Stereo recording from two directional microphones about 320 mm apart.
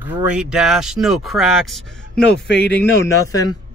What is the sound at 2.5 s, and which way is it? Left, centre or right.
Speech, left.